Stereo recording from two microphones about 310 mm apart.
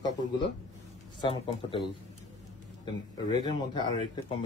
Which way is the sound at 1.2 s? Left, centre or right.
Centre.